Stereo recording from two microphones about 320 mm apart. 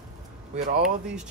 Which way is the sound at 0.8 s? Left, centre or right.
Centre.